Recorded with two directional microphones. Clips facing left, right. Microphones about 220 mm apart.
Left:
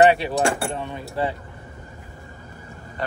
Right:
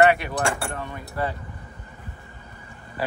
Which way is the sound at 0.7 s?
25° left (ahead or behind).